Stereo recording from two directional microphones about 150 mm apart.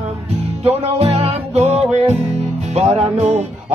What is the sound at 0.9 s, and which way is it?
Music, 40° right (ahead or behind).